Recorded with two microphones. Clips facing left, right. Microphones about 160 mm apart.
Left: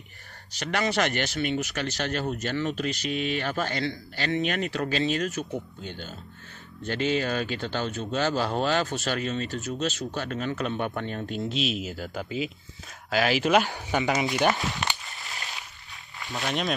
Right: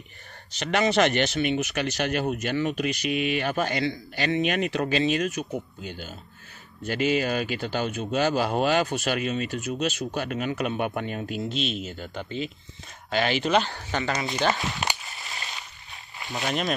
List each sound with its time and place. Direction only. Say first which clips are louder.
0.5 s speech: right 4 dB; 20° right (ahead or behind); by 14.3 s 15° left (ahead or behind)
14.5 s speech: even; centre (ahead or behind)
15.0 s a sound: right 1 dB; centre (ahead or behind)
16.3 s speech: right 1 dB; centre (ahead or behind)